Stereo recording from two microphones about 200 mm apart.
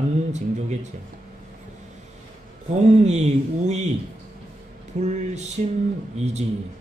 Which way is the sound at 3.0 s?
35° right (ahead or behind).